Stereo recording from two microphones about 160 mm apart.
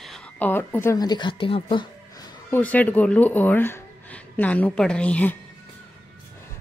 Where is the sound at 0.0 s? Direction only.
5° left (ahead or behind); by 2.4 s 25° left (ahead or behind).